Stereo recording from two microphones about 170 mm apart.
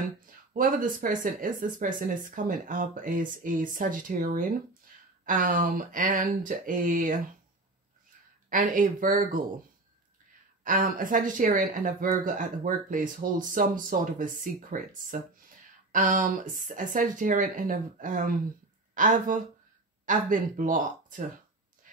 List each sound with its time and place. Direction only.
0.5 s speech: 50° right (ahead or behind)
8.5 s speech: 55° right (ahead or behind)
10.6 s speech: 50° right (ahead or behind)